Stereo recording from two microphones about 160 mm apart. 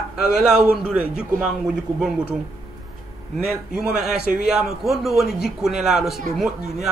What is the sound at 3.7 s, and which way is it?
A man's voice, 5° right (ahead or behind).